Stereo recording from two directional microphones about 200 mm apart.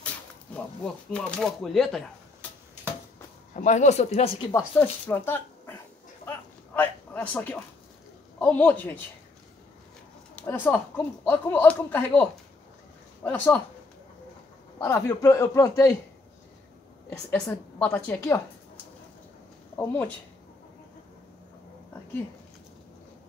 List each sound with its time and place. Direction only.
1.1 s speech: 5° left (ahead or behind)
3.5 s speech: 35° left (ahead or behind)
4.5 s speech: 10° left (ahead or behind)
6.2 s a sound: 10° left (ahead or behind)
8.4 s speech: 10° left (ahead or behind)
10.3 s speech: 10° left (ahead or behind)
14.8 s speech: 15° left (ahead or behind)
17.3 s speech: 10° left (ahead or behind)
19.8 s speech: 10° left (ahead or behind)